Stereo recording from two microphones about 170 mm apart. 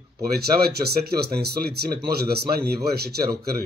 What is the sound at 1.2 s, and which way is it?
Speech, 65° right (ahead or behind).